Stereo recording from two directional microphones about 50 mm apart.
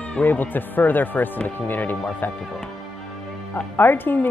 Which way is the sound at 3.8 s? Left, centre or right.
Left.